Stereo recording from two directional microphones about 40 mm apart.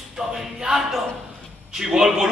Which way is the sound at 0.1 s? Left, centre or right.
Centre.